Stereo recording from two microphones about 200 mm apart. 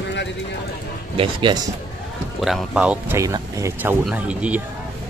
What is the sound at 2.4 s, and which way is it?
Speech, 5° right (ahead or behind).